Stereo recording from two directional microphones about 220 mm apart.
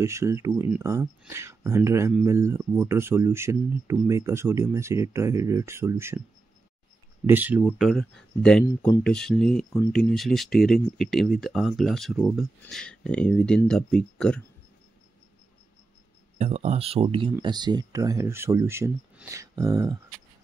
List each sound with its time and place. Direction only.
0.0 s speech: 15° right (ahead or behind)
7.2 s speech: 10° right (ahead or behind)
16.3 s speech: 30° right (ahead or behind); by 20.0 s 15° right (ahead or behind)